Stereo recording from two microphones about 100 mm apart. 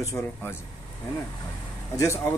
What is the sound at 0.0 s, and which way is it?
Speech, 30° left (ahead or behind).